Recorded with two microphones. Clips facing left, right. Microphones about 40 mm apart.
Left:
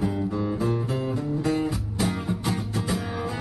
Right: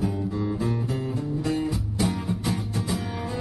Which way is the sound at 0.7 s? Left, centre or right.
Left.